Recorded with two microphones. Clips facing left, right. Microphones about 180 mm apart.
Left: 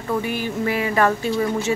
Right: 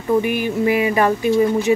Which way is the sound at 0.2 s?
15° right (ahead or behind).